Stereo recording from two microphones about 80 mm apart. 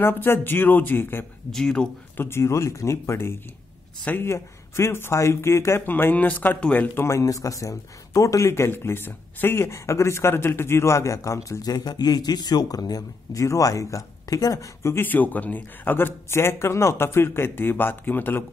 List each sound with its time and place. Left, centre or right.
0.0 s speech: left
1.5 s speech: centre
2.1 s speech: left
7.1 s speech: left
15.0 s speech: left